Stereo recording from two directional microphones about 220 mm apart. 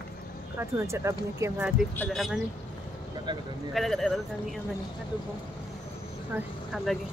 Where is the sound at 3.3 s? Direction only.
20° right (ahead or behind).